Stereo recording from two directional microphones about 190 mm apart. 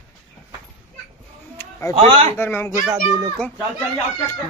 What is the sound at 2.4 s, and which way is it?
Speech, 10° left (ahead or behind).